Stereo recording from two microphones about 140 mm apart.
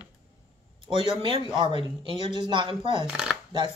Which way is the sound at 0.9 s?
40° right (ahead or behind).